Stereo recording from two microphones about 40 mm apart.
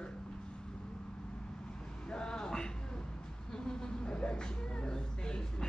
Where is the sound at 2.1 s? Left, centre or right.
Left.